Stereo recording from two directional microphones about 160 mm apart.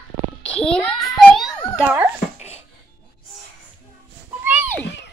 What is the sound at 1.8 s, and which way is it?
Dog, 10° right (ahead or behind).